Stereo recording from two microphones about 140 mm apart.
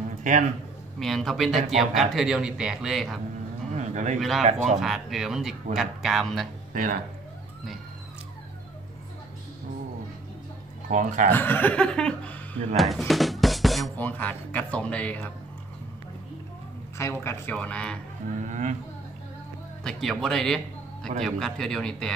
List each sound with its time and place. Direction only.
0.2 s speech: 65° right (ahead or behind)
0.9 s speech: centre (ahead or behind)
3.7 s a sound: 55° right (ahead or behind)
4.2 s speech: centre (ahead or behind)
4.5 s speech: 55° right (ahead or behind)
4.7 s speech: centre (ahead or behind)
6.7 s speech: 75° right (ahead or behind)
10.9 s speech: 65° right (ahead or behind)
11.2 s speech: 15° left (ahead or behind)
12.7 s music: centre (ahead or behind)
13.9 s speech: 10° left (ahead or behind)
17.0 s speech: 20° left (ahead or behind)
18.4 s speech: 60° right (ahead or behind)
19.8 s a man's voice: 5° left (ahead or behind)